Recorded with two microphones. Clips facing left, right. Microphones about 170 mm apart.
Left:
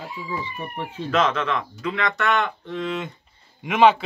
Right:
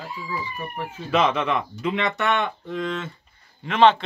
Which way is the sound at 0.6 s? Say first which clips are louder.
Left 1 dB; 25° left (ahead or behind).